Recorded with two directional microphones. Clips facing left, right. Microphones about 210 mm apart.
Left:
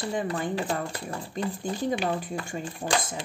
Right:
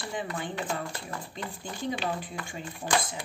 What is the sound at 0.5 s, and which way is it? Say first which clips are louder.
Speech: left 4 dB; 30° left (ahead or behind).